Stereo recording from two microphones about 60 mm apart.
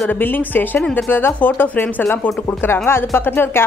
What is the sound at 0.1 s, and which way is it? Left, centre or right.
Speech, left.